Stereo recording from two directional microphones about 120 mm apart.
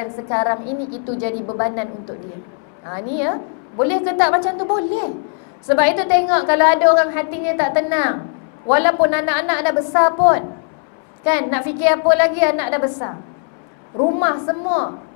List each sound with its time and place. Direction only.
0.0 s a woman's voice: 20° left (ahead or behind)
2.9 s a woman's voice: 20° left (ahead or behind)